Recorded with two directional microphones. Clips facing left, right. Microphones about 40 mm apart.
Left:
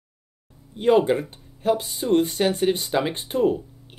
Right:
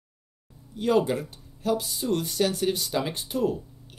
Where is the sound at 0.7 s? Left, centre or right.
Left.